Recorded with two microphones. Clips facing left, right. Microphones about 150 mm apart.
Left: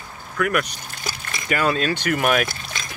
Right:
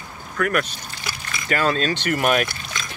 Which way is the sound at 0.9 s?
45° left (ahead or behind).